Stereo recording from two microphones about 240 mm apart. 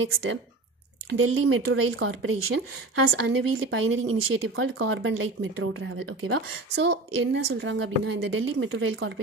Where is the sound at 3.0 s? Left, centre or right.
Right.